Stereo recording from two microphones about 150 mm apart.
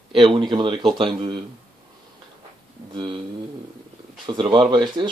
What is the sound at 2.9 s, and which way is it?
Speech, 35° right (ahead or behind).